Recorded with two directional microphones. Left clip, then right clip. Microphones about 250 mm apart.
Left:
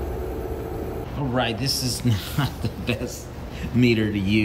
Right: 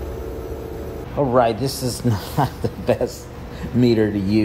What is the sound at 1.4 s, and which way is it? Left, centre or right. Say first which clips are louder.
Speech: right 5 dB; centre.